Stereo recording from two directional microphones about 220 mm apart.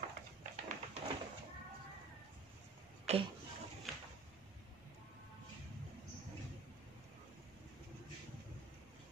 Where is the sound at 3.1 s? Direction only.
30° right (ahead or behind).